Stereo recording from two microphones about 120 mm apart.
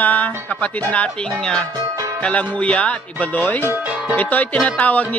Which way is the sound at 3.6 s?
15° right (ahead or behind).